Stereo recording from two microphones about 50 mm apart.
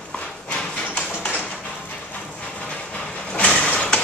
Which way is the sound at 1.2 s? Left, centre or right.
Left.